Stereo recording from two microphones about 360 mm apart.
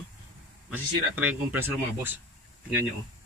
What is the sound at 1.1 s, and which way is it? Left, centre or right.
Speech, centre.